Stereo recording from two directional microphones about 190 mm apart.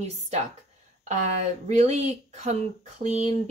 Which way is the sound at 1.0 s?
40° right (ahead or behind).